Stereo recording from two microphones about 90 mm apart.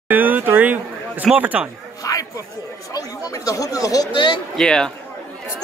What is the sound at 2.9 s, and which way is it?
Speech, 40° left (ahead or behind).